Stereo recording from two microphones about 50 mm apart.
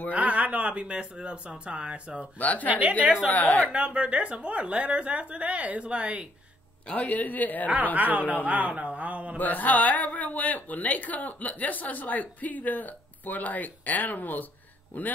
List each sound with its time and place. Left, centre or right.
0.1 s speech: right
2.3 s a woman's voice: left
3.7 s speech: right
6.9 s a woman's voice: left
7.6 s a woman's voice: right
9.4 s a woman's voice: left